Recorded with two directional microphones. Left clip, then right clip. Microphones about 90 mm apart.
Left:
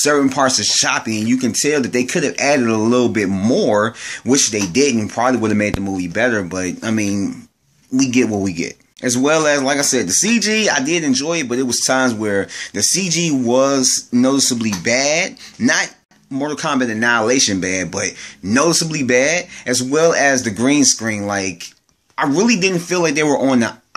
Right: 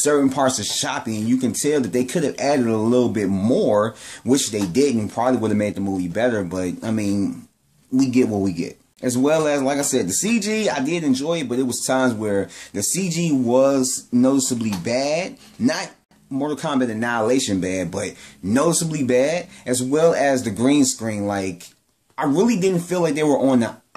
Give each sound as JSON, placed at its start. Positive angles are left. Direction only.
{"t": 0.0, "sound": "speech", "side_deg": -20}